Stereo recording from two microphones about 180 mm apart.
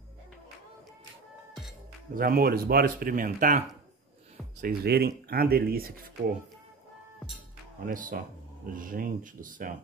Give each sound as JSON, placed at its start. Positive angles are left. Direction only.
{"t": 2.1, "sound": "speech", "side_deg": -55}
{"t": 7.8, "sound": "speech", "side_deg": -50}